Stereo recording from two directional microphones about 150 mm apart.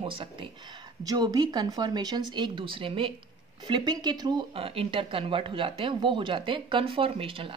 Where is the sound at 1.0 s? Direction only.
25° right (ahead or behind).